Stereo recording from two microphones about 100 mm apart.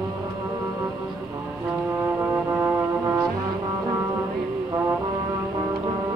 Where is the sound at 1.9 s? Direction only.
20° right (ahead or behind).